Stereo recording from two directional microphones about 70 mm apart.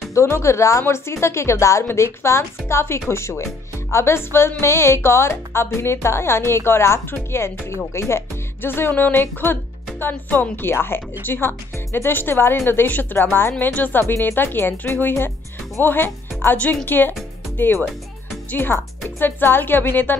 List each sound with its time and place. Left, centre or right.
0.1 s speech: left
18.5 s speech: left